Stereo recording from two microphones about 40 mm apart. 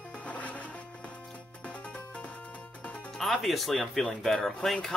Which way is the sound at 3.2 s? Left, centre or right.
Centre.